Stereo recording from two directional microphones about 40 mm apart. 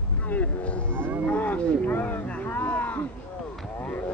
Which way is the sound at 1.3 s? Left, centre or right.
Left.